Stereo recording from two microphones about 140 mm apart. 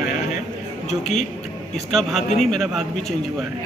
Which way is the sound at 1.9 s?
Centre (ahead or behind).